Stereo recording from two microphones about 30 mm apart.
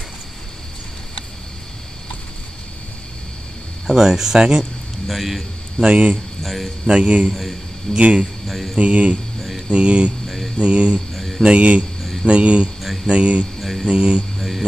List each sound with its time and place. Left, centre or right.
3.9 s speech: centre
5.0 s a man's voice: centre
5.9 s speech: right
6.4 s speech: centre
6.9 s speech: right
8.5 s speech: centre
8.7 s speech: right
9.7 s speech: right
10.2 s mantra: centre
10.6 s speech: right
11.1 s a sound: centre
11.4 s speech: right
13.6 s a sound: centre
13.8 s speech: right